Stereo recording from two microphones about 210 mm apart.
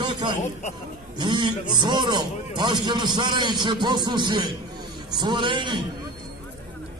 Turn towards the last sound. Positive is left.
turn(degrees=-20)  # may be behind; listen again after turning